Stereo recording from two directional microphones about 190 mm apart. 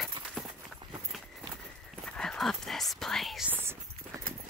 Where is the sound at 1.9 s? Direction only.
5° left (ahead or behind).